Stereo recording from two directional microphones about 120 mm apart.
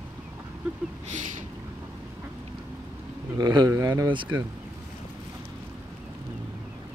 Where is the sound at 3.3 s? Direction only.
35° right (ahead or behind).